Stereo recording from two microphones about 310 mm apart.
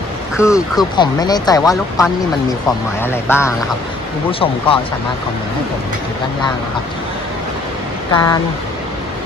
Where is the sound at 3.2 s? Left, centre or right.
Centre.